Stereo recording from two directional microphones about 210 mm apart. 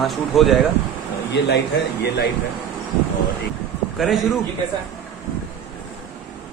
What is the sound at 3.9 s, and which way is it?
Speech, centre (ahead or behind).